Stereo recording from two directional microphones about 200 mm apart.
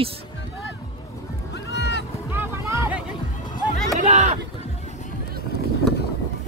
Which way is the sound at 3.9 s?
35° right (ahead or behind).